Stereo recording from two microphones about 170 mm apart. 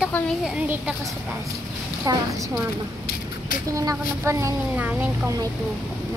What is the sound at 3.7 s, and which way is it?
Speech, 20° right (ahead or behind).